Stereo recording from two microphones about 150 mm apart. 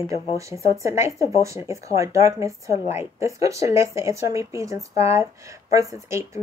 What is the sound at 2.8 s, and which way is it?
Speech, 45° left (ahead or behind).